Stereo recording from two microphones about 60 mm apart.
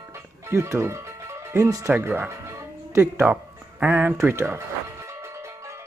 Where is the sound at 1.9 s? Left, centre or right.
Centre.